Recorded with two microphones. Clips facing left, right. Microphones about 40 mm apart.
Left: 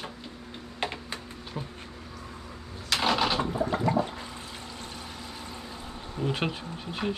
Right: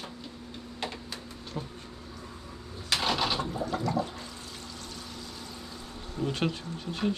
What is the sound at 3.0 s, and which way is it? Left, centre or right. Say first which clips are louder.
Toilet flush: left 4 dB; centre.